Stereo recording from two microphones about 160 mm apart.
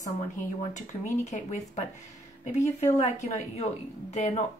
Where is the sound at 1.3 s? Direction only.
45° left (ahead or behind).